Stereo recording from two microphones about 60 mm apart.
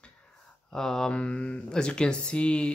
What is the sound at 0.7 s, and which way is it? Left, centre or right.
Speech, centre.